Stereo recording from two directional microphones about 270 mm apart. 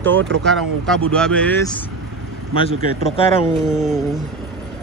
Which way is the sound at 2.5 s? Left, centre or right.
Left.